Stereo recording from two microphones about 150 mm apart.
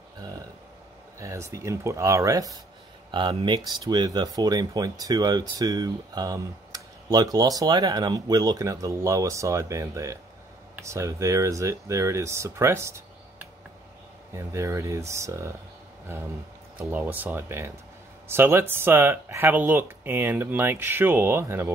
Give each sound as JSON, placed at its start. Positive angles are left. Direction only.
{"t": 1.2, "sound": "speech", "side_deg": -20}
{"t": 14.3, "sound": "speech", "side_deg": -20}